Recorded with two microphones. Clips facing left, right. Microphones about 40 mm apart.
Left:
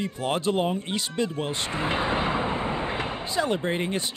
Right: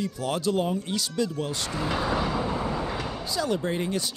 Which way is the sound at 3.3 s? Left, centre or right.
Left.